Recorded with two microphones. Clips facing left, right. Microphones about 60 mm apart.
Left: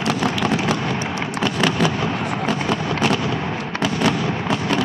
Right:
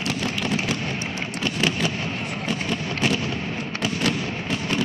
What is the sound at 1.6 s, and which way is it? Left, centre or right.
Fireworks, left.